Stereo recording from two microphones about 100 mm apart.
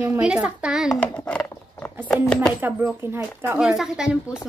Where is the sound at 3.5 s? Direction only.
5° right (ahead or behind).